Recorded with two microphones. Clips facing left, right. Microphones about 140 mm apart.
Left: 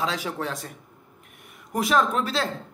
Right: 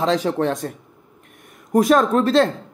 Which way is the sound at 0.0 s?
45° right (ahead or behind).